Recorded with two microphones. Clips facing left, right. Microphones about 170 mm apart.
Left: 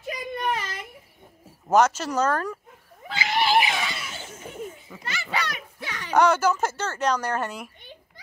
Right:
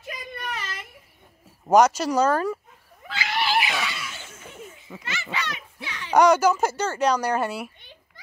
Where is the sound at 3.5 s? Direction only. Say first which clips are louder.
Left 3 dB; 25° left (ahead or behind).